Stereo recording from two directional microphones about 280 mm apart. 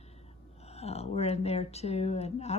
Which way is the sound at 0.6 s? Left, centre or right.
Left.